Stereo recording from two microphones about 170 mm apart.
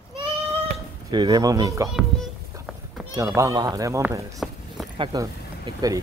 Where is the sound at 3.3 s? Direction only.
20° right (ahead or behind).